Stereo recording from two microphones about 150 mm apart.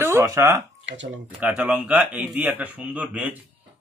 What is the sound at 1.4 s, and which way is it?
Speech, 10° right (ahead or behind).